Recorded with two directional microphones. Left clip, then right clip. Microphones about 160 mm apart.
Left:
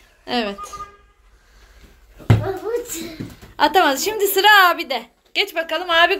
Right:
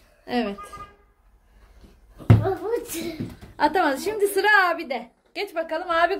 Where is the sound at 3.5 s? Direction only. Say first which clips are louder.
Left 6 dB; centre (ahead or behind).